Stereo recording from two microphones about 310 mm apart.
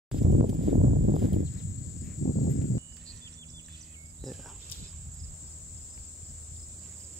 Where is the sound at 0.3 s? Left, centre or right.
Right.